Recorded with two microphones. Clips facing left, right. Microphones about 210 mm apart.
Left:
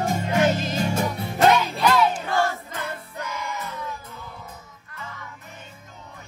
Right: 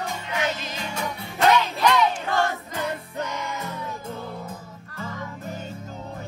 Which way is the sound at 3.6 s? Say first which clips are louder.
Right 1 dB; 45° right (ahead or behind).